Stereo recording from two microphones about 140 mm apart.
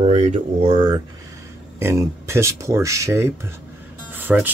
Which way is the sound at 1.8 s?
20° right (ahead or behind).